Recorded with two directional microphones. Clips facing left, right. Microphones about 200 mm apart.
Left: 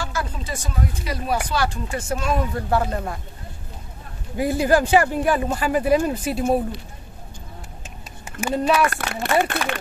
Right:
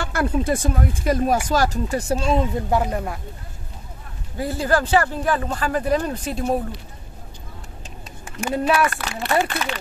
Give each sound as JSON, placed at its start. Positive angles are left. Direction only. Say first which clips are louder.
{"t": 0.0, "sound": "speech", "louder": "right 7 dB", "side_deg": -60}
{"t": 4.4, "sound": "speech", "louder": "left 3 dB", "side_deg": 15}
{"t": 8.3, "sound": "speech", "louder": "even", "side_deg": 0}
{"t": 8.8, "sound": "speech", "louder": "left 1 dB", "side_deg": 50}